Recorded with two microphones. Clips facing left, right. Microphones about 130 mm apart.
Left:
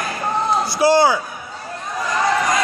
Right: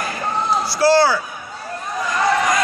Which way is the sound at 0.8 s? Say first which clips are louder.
Even; 20° left (ahead or behind).